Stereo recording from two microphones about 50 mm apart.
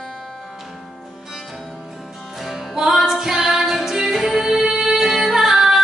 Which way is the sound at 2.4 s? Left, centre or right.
Centre.